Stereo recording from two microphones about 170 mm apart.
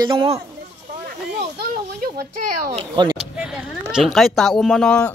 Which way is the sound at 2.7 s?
30° right (ahead or behind).